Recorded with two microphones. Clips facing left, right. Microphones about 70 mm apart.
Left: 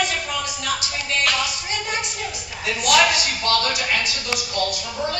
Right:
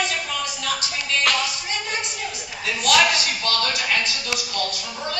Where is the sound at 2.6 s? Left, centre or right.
Centre.